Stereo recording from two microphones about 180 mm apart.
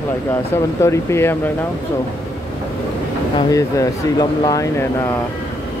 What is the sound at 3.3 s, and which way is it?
Speech, 20° left (ahead or behind).